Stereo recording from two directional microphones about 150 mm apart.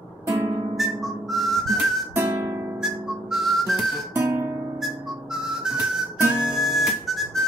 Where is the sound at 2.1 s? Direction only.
15° right (ahead or behind).